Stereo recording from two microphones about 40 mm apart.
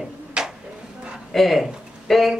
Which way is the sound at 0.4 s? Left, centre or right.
Right.